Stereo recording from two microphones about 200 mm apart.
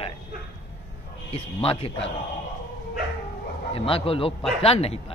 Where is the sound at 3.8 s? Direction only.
25° left (ahead or behind).